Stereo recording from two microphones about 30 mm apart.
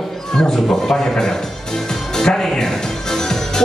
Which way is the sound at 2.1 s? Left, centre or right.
Centre.